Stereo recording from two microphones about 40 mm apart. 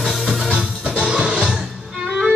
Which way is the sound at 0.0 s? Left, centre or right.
Centre.